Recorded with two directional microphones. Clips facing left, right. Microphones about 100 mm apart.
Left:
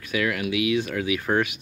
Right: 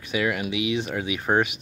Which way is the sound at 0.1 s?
25° right (ahead or behind).